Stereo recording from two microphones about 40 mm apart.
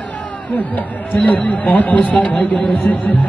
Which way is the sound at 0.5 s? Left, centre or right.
Left.